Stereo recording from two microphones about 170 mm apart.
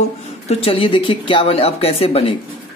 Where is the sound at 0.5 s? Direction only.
35° left (ahead or behind).